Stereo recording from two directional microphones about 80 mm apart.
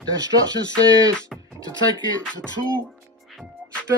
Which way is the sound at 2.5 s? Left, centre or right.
Left.